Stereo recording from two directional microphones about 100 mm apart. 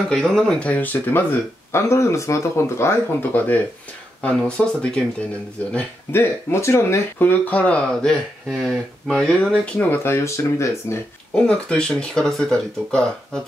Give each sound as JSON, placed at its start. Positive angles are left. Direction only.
{"t": 0.1, "sound": "speech", "side_deg": 5}
{"t": 6.1, "sound": "speech", "side_deg": 25}
{"t": 11.3, "sound": "speech", "side_deg": 10}